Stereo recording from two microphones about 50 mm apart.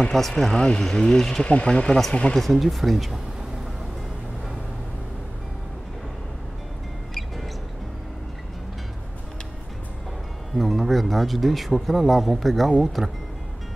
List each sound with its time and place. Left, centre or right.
0.0 s speech: centre
1.4 s speech: left
2.3 s speech: centre
10.5 s speech: centre